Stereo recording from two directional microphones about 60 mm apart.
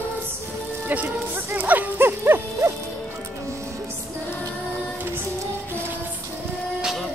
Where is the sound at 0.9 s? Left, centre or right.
Right.